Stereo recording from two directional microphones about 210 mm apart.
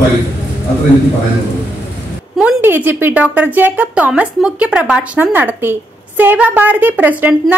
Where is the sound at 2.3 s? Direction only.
5° right (ahead or behind).